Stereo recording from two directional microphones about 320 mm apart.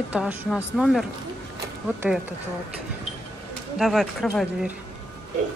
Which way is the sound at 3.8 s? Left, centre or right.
Centre.